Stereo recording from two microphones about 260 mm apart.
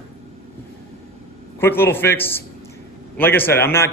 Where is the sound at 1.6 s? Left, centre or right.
Centre.